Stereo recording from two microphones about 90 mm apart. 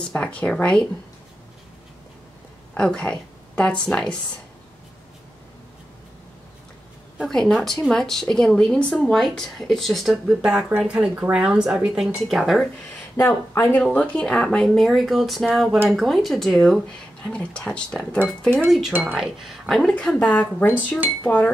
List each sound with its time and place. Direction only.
0.1 s speech: 10° left (ahead or behind)
2.7 s speech: 10° left (ahead or behind)
7.2 s speech: 5° left (ahead or behind)
13.1 s speech: 30° left (ahead or behind)
13.8 s speech: 10° left (ahead or behind)
18.7 s speech: 5° right (ahead or behind); by 21.5 s 20° left (ahead or behind)